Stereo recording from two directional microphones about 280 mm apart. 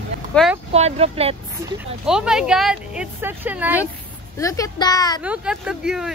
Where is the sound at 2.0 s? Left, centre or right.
Centre.